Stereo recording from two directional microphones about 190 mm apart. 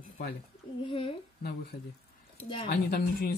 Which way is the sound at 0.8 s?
25° left (ahead or behind).